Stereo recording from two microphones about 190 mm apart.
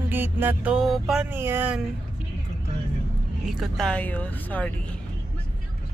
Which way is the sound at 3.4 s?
Centre (ahead or behind).